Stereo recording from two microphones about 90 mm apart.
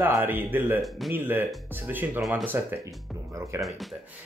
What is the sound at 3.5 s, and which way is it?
Speech, 30° right (ahead or behind).